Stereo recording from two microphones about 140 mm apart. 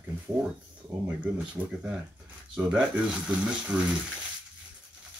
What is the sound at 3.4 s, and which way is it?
Speech, 10° right (ahead or behind).